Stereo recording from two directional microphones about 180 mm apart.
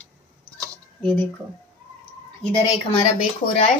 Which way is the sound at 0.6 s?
10° left (ahead or behind).